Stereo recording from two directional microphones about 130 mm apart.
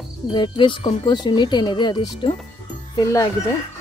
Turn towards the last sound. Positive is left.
turn(degrees=25)  # may be behind; listen again after turning